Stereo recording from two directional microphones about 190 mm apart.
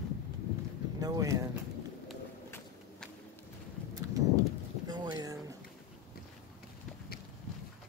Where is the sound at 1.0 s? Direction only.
15° right (ahead or behind).